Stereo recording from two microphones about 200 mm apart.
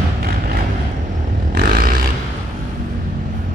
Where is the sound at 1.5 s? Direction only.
45° right (ahead or behind).